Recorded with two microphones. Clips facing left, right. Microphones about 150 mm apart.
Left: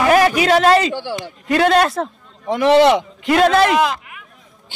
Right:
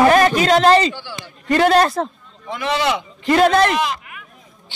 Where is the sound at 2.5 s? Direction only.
65° left (ahead or behind).